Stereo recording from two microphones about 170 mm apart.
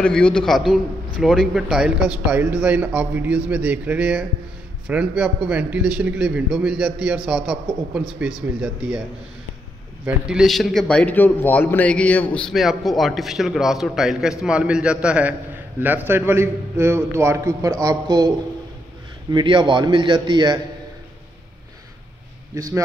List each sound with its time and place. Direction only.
0.0 s a man's voice: 5° left (ahead or behind)
10.0 s a man's voice: 5° right (ahead or behind); by 18.3 s 20° right (ahead or behind)
19.3 s a man's voice: 25° right (ahead or behind)